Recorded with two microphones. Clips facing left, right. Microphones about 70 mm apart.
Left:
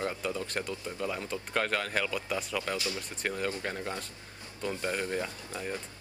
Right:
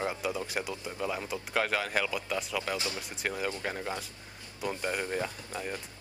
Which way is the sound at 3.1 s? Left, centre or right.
Centre.